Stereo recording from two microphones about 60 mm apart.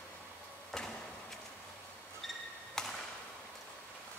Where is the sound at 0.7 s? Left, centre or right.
Centre.